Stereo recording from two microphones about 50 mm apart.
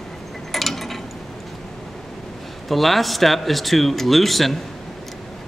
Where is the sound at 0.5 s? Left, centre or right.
Centre.